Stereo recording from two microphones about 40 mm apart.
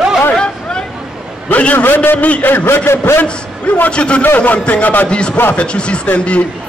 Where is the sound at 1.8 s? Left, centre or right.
Left.